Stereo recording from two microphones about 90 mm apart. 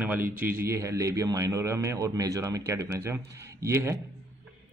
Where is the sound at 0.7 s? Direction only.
35° right (ahead or behind).